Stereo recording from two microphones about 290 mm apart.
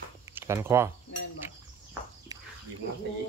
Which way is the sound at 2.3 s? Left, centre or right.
Centre.